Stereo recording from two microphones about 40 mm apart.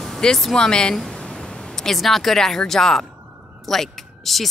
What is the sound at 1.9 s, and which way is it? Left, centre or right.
A woman's voice, centre.